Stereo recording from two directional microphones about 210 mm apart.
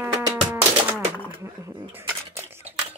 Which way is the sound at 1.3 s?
15° right (ahead or behind).